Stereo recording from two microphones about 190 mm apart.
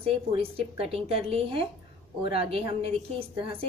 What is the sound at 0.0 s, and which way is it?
A woman's voice, 30° right (ahead or behind).